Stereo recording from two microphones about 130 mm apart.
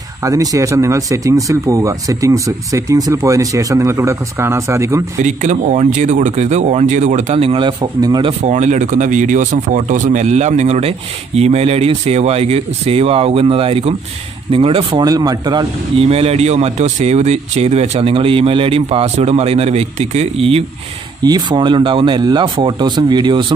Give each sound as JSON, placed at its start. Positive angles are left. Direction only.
{"t": 0.2, "sound": "speech", "side_deg": -25}
{"t": 5.2, "sound": "speech", "side_deg": -65}
{"t": 8.3, "sound": "speech", "side_deg": -65}
{"t": 16.0, "sound": "speech", "side_deg": -50}
{"t": 21.2, "sound": "speech", "side_deg": -35}